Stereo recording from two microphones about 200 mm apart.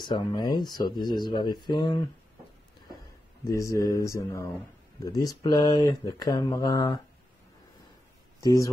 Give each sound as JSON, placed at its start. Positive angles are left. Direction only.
{"t": 0.0, "sound": "speech", "side_deg": 20}
{"t": 3.4, "sound": "speech", "side_deg": 15}
{"t": 8.4, "sound": "speech", "side_deg": 15}